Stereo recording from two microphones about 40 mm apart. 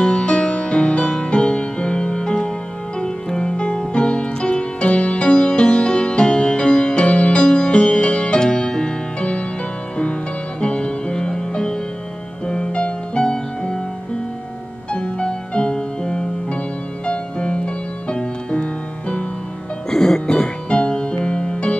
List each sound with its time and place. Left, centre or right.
0.0 s music: left
10.6 s music: left
14.9 s music: left
19.9 s music: centre